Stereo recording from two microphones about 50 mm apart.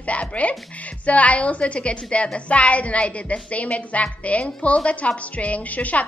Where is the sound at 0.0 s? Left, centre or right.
Left.